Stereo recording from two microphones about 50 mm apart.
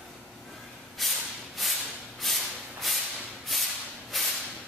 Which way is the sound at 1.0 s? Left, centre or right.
Centre.